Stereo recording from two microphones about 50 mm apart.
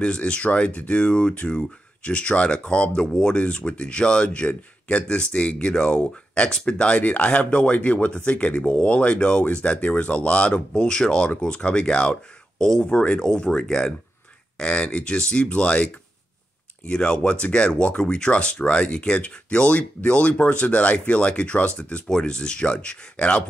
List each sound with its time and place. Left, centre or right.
0.0 s speech: left
22.0 s speech: centre